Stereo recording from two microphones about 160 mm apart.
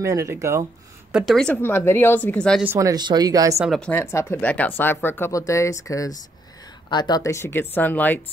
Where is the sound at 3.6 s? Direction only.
5° left (ahead or behind).